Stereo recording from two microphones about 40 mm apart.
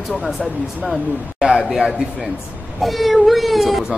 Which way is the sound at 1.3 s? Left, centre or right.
Centre.